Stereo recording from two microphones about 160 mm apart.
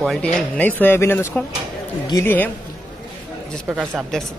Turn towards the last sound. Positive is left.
turn(degrees=-5)  # may be behind; listen again after turning